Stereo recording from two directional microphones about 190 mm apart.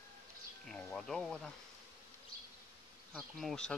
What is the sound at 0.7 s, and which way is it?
Speech, 5° left (ahead or behind).